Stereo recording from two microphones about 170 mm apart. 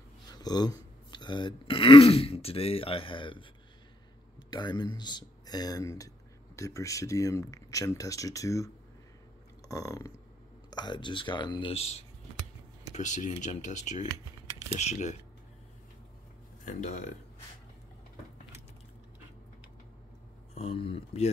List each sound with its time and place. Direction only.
0.3 s speech: 25° left (ahead or behind)
4.5 s speech: 25° left (ahead or behind); by 15.1 s 45° left (ahead or behind)
16.6 s speech: 45° left (ahead or behind)
20.5 s speech: 35° left (ahead or behind)